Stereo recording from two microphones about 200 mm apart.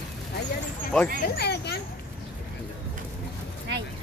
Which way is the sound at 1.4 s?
55° left (ahead or behind).